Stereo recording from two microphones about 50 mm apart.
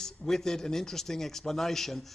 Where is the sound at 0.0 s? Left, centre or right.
Centre.